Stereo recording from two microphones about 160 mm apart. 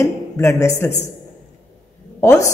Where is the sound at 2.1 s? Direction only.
20° left (ahead or behind).